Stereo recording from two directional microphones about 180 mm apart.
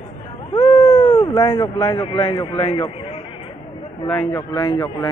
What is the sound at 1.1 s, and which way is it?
A man's voice, 25° left (ahead or behind).